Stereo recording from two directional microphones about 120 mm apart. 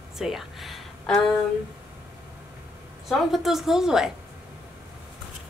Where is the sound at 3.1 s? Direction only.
Centre (ahead or behind).